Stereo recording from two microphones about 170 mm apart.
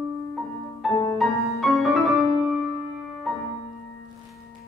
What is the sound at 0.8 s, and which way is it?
Music, centre (ahead or behind).